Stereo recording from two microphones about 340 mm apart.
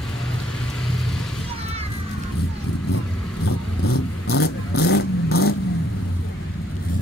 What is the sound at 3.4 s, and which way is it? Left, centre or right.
Vehicle, left.